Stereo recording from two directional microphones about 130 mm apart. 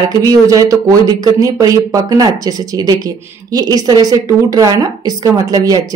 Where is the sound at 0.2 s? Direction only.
25° right (ahead or behind).